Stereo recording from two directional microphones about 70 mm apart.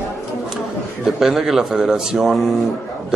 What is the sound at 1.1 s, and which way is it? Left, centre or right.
A man's voice, centre.